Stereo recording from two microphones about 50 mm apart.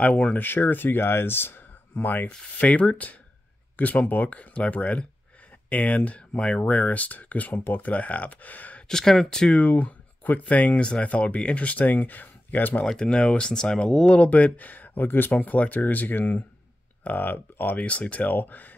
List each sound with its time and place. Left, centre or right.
0.0 s speech: left
2.6 s speech: left
8.8 s speech: centre
9.6 s speech: left
13.0 s speech: left
15.3 s speech: left
17.8 s speech: left